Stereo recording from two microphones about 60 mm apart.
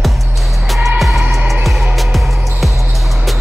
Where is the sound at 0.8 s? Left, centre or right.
Centre.